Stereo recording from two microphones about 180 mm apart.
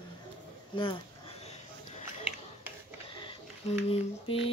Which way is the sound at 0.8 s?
30° left (ahead or behind).